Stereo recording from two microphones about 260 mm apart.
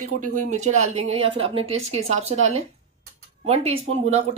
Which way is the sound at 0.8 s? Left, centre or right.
Right.